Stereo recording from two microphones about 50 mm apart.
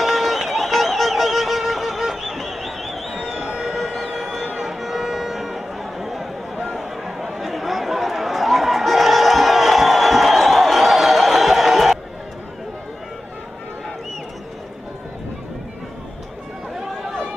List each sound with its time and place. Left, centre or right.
0.0 s music: centre
3.2 s music: centre
3.7 s music: centre
4.5 s chatter: centre